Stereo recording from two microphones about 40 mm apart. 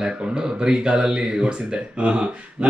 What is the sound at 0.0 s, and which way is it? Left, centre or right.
Speech, centre.